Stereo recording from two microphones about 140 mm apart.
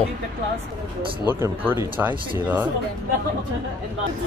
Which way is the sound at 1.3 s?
15° right (ahead or behind).